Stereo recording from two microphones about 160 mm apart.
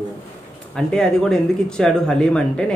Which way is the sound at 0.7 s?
5° left (ahead or behind).